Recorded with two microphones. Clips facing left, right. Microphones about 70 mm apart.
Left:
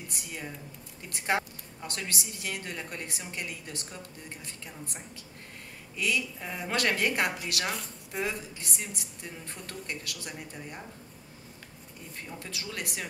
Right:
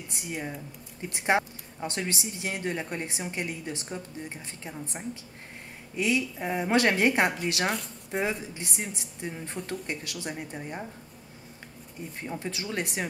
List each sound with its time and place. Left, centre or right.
0.1 s a woman's voice: right
12.2 s a woman's voice: right